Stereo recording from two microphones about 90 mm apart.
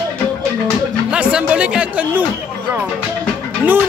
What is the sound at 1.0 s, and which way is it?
Speech, 15° right (ahead or behind).